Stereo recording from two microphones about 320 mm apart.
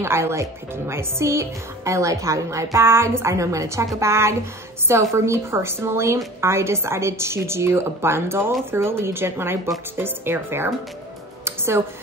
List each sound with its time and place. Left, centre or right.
0.0 s a woman's voice: centre
11.4 s music: centre